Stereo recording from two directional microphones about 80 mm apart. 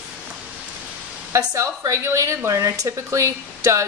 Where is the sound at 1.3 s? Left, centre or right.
Right.